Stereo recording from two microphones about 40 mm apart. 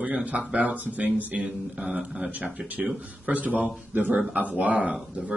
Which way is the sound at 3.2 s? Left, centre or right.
Right.